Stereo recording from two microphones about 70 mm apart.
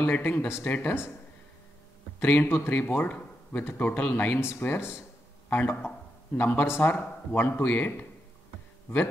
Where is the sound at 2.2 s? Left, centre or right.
Left.